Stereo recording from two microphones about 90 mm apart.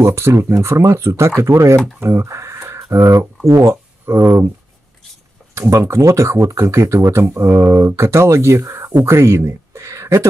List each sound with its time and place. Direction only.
0.0 s speech: 30° right (ahead or behind)
5.5 s speech: 35° right (ahead or behind)